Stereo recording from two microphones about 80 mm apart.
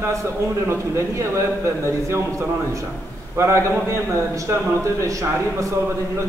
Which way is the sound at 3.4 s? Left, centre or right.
Right.